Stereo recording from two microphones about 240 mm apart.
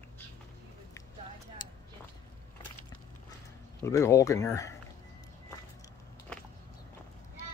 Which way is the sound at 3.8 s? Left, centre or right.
Centre.